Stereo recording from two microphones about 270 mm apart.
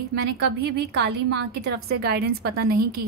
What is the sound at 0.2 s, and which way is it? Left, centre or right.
A woman's voice, right.